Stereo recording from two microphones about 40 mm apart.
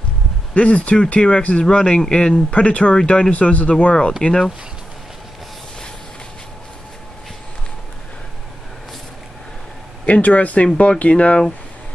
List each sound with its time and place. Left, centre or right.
0.6 s speech: left
2.3 s speech: left; by 4.5 s centre
10.0 s speech: left